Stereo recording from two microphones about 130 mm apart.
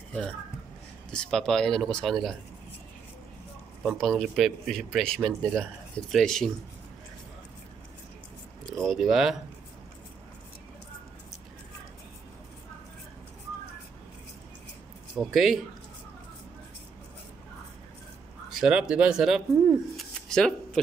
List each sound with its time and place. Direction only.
1.1 s speech: 5° left (ahead or behind)
4.0 s speech: centre (ahead or behind)
8.7 s speech: centre (ahead or behind)
15.1 s speech: centre (ahead or behind)
18.5 s speech: 5° right (ahead or behind)
20.2 s a sound: 5° left (ahead or behind)